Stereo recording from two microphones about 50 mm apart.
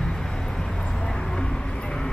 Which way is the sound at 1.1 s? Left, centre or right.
Centre.